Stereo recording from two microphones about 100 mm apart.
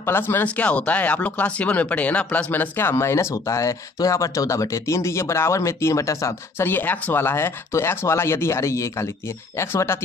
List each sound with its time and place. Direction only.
0.0 s speech: 20° left (ahead or behind)